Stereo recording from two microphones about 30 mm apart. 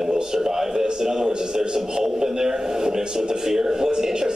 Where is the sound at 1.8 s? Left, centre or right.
Centre.